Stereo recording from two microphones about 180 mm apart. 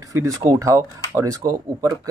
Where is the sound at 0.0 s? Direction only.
15° right (ahead or behind).